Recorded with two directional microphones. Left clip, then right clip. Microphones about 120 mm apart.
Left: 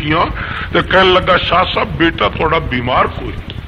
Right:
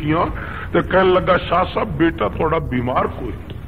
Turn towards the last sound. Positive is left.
turn(degrees=-35)  # may be behind; listen again after turning